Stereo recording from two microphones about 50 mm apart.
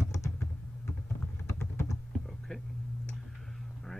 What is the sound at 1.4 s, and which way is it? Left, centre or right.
Typing, left.